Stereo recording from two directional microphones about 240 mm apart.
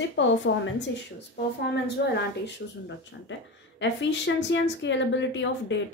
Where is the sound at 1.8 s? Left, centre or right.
Left.